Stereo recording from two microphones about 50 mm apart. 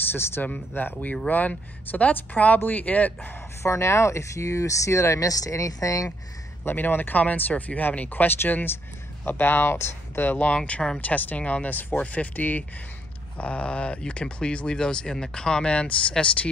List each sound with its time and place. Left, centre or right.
0.1 s speech: left
0.4 s speech: left
3.6 s speech: left
6.6 s speech: left
10.2 s speech: left
11.0 s speech: left
13.4 s speech: left